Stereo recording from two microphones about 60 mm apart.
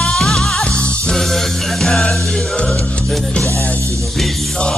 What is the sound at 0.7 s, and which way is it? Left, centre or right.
Music, centre.